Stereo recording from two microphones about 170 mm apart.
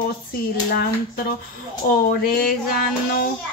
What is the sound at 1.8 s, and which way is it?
Speech, 65° left (ahead or behind).